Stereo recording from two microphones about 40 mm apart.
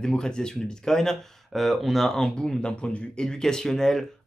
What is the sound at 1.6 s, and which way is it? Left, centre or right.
Speech, centre.